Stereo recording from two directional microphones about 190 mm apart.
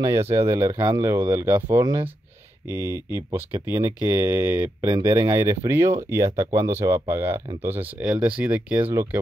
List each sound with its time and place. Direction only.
0.0 s speech: 15° right (ahead or behind)
4.6 s speech: 25° right (ahead or behind); by 8.8 s 5° right (ahead or behind)